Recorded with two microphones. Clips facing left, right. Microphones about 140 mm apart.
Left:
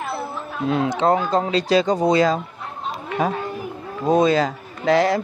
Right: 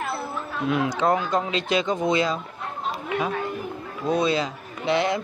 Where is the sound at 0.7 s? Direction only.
30° left (ahead or behind).